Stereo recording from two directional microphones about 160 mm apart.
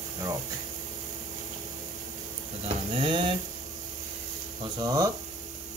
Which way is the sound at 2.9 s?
30° right (ahead or behind).